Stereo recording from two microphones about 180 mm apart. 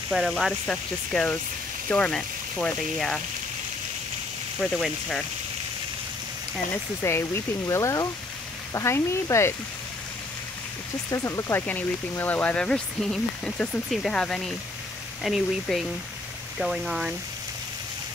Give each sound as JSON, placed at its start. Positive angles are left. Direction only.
{"t": 0.1, "sound": "speech", "side_deg": 0}
{"t": 4.6, "sound": "speech", "side_deg": 0}
{"t": 6.7, "sound": "speech", "side_deg": 15}
{"t": 11.1, "sound": "speech", "side_deg": 15}